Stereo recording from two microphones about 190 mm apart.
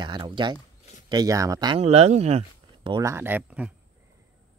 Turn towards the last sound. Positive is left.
turn(degrees=-5)  # may be behind; listen again after turning